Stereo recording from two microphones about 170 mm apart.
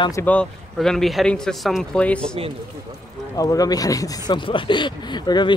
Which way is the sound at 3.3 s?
20° left (ahead or behind).